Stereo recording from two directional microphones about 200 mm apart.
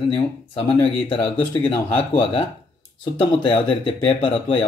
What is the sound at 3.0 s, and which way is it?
Speech, 25° left (ahead or behind).